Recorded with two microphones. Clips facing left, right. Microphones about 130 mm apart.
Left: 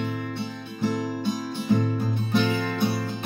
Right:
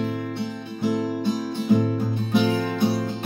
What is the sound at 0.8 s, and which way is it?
Music, 10° right (ahead or behind).